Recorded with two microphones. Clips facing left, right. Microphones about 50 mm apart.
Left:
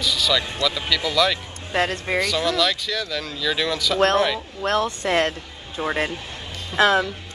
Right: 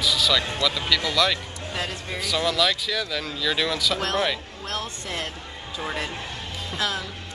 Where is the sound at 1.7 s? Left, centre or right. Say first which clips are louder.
Left 9 dB; left.